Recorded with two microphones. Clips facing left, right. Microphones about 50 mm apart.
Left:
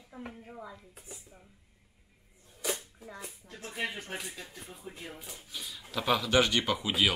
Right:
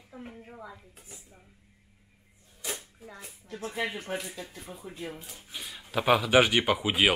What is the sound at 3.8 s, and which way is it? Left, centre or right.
Speech, right.